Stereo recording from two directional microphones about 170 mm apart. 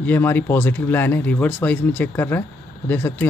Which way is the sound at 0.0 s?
10° left (ahead or behind).